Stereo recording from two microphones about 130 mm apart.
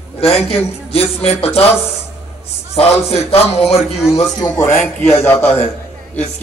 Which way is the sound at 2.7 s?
50° left (ahead or behind).